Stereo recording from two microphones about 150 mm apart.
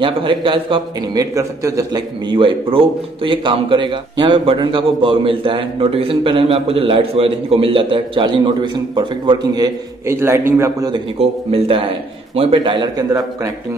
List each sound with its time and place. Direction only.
0.0 s a man's voice: 35° right (ahead or behind)
10.0 s a man's voice: 15° right (ahead or behind)
10.9 s a man's voice: 40° right (ahead or behind)